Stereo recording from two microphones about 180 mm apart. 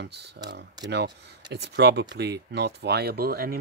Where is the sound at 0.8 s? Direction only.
70° right (ahead or behind).